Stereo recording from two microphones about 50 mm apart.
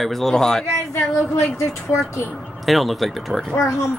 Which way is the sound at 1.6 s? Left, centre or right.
Left.